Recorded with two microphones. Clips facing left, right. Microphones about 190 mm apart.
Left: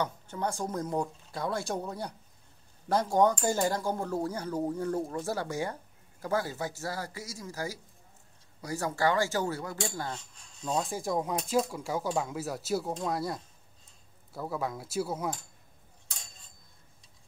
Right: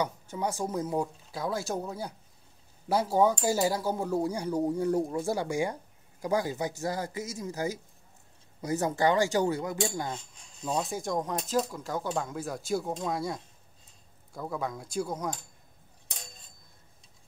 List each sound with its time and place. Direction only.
0.0 s speech: 10° right (ahead or behind)
10.6 s speech: centre (ahead or behind)